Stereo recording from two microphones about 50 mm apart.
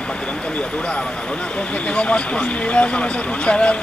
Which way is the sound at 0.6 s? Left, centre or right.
Left.